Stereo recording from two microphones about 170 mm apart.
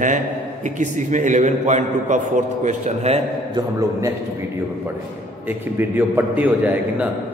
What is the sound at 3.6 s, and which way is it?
Speech, 20° right (ahead or behind).